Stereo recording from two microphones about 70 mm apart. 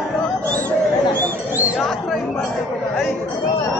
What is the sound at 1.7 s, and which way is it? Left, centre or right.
Chatter, centre.